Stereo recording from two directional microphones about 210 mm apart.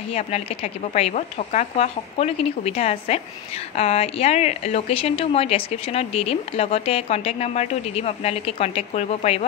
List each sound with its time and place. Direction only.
0.1 s a woman's voice: 30° left (ahead or behind)